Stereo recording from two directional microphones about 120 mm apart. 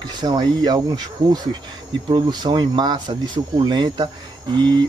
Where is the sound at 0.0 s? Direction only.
35° right (ahead or behind).